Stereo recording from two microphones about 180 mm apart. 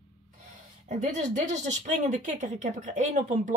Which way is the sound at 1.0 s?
40° right (ahead or behind).